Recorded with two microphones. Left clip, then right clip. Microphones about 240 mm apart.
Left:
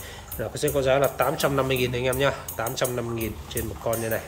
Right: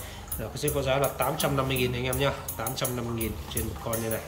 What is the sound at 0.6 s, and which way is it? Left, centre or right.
Speech, centre.